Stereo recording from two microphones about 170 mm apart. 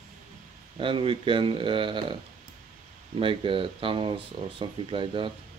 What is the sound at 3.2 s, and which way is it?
Speech, 30° right (ahead or behind).